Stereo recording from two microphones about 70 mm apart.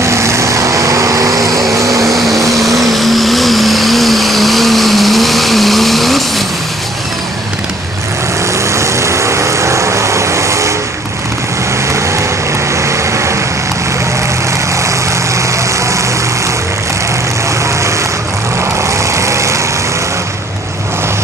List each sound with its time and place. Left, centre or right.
0.0 s vehicle: right
2.0 s vehicle: centre
8.7 s vehicle: right
12.8 s vehicle: right
19.1 s vehicle: right